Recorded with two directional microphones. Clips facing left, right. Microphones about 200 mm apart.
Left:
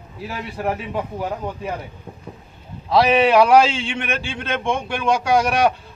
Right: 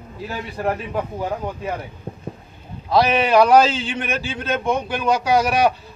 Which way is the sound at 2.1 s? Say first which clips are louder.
Right 4 dB; 40° right (ahead or behind).